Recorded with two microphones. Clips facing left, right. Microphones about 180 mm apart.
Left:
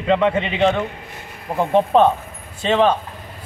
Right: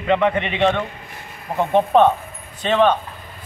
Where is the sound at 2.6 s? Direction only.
25° left (ahead or behind).